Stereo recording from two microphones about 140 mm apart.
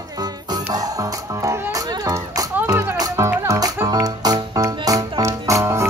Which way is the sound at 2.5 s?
10° right (ahead or behind).